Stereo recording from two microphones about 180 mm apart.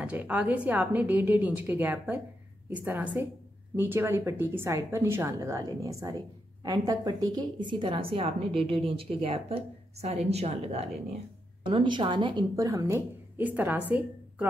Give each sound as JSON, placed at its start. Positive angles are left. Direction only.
{"t": 0.0, "sound": "speech", "side_deg": -10}